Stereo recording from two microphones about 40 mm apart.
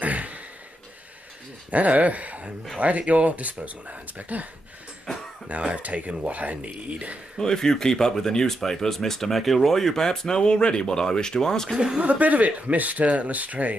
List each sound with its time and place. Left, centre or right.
0.0 s a sound: right
1.7 s speech: right
5.7 s speech: right
7.3 s speech: centre
11.7 s speech: centre
12.0 s speech: right